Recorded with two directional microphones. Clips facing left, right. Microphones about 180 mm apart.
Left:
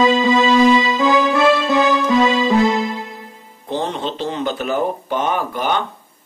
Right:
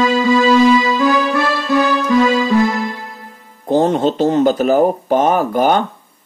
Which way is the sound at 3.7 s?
45° right (ahead or behind).